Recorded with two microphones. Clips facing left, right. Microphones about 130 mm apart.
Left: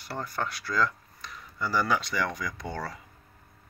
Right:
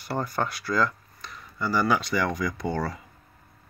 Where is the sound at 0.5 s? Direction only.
5° right (ahead or behind).